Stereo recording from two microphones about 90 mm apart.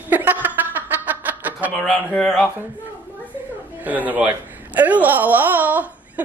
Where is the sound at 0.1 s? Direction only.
20° right (ahead or behind).